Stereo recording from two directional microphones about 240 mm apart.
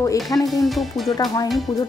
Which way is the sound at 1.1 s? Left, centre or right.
Centre.